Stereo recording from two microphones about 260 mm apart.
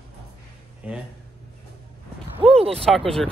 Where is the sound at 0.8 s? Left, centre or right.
Centre.